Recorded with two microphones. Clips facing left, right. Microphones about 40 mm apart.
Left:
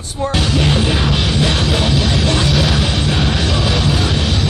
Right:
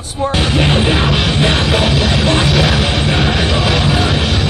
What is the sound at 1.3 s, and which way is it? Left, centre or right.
Music, right.